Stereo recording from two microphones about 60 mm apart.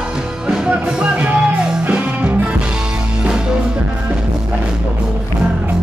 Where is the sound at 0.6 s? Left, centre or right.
Right.